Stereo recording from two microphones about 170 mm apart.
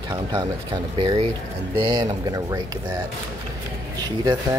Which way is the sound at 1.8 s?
25° right (ahead or behind).